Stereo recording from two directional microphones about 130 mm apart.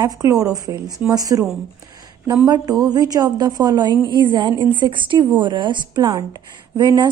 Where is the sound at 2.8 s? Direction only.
30° right (ahead or behind).